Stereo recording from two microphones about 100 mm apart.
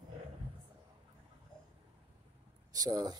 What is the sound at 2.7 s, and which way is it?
Speech, 35° right (ahead or behind).